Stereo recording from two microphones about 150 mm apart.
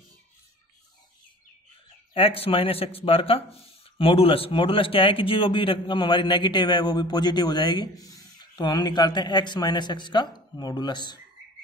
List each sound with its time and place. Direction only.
2.1 s speech: 40° left (ahead or behind)